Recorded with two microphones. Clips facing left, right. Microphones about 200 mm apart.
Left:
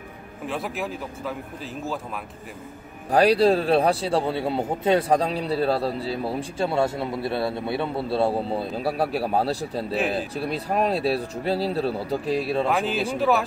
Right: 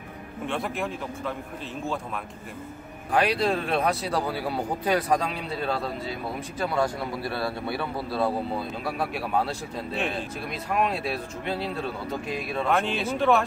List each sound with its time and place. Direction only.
0.5 s speech: centre (ahead or behind)
3.1 s a man's voice: 35° left (ahead or behind)
12.6 s speech: centre (ahead or behind)